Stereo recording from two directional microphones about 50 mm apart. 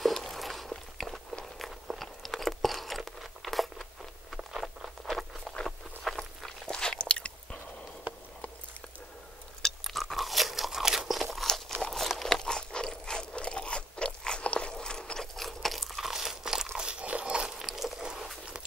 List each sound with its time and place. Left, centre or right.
0.0 s a sound: centre
1.4 s biting: centre
3.1 s crunch: centre
4.5 s a sound: centre
5.0 s walk: centre; by 7.3 s left
9.6 s crunch: centre
12.3 s crunch: centre
16.7 s biting: right
17.6 s a sound: centre